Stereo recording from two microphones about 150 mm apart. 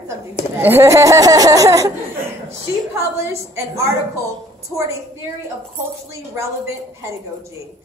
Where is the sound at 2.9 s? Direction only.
20° right (ahead or behind).